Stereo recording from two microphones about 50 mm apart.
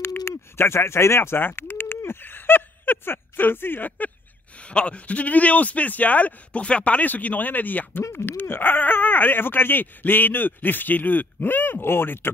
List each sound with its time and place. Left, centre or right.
0.0 s owl: left
2.0 s a sound: left
4.6 s speech: left
8.1 s speech: left